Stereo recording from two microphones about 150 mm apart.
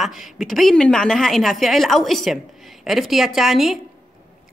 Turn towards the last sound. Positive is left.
turn(degrees=0)  # may be behind; listen again after turning